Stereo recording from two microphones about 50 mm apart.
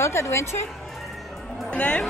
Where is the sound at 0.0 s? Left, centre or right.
Left.